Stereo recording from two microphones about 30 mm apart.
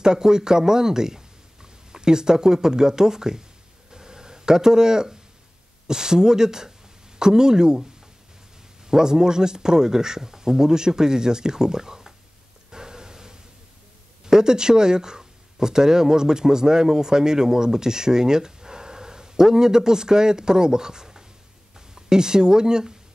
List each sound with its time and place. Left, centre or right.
0.0 s speech: right
3.9 s a sound: right
5.9 s speech: right
8.8 s speech: right
12.7 s breathing: right
14.2 s speech: right